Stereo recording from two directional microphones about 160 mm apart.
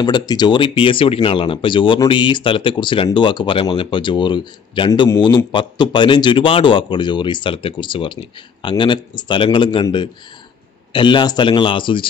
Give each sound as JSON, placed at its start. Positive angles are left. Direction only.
{"t": 0.0, "sound": "a man's voice", "side_deg": 25}